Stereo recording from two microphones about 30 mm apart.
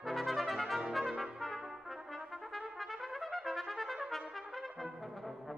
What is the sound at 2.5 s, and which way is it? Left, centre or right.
Trumpet, centre.